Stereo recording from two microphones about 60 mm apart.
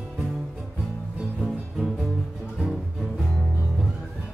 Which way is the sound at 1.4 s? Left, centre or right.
Centre.